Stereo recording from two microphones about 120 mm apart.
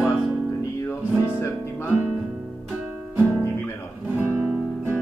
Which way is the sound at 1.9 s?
10° right (ahead or behind).